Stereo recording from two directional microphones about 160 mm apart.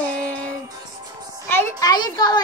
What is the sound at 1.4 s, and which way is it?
Speech, 15° left (ahead or behind).